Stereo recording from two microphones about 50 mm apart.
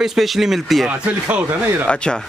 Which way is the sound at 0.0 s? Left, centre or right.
Centre.